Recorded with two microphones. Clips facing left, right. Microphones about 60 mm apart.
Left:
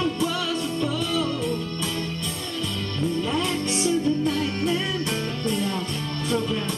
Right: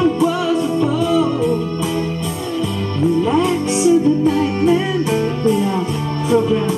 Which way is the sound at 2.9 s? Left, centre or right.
Centre.